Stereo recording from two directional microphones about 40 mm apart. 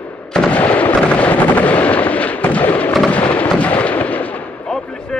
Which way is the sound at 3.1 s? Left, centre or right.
Left.